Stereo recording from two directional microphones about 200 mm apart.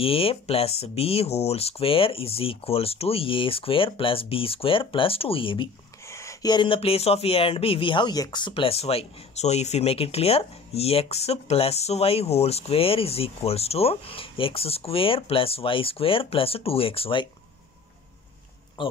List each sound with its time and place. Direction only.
0.0 s speech: 30° left (ahead or behind)
6.0 s speech: 15° left (ahead or behind)
18.8 s a man's voice: 25° left (ahead or behind)